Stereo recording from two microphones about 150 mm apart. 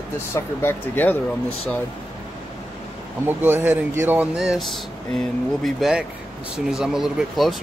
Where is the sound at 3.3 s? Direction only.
15° right (ahead or behind).